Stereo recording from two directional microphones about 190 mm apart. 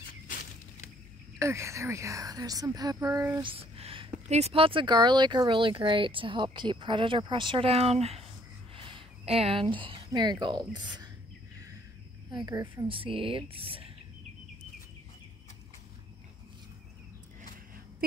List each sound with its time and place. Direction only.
1.4 s a woman's voice: 15° right (ahead or behind)
3.4 s speech: 30° right (ahead or behind)
8.7 s a sound: 30° right (ahead or behind)
9.8 s speech: 25° right (ahead or behind)
12.3 s speech: 20° right (ahead or behind)